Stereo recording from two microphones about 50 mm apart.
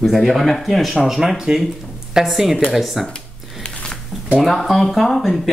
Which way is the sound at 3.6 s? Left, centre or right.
Centre.